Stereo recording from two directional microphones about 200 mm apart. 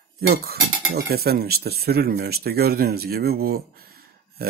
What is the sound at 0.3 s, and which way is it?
Speech, 50° right (ahead or behind).